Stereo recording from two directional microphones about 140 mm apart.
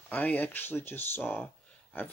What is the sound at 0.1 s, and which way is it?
Speech, 10° left (ahead or behind).